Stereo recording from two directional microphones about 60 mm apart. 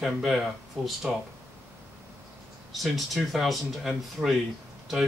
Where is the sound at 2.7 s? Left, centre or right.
Centre.